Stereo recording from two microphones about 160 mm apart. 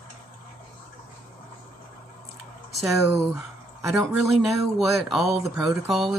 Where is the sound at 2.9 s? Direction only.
Centre (ahead or behind).